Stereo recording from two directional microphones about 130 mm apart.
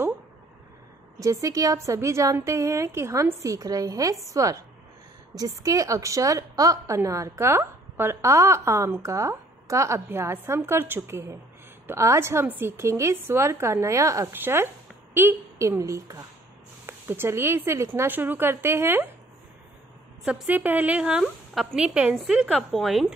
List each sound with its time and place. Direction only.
1.2 s a woman's voice: 25° right (ahead or behind)
20.2 s a woman's voice: 10° right (ahead or behind)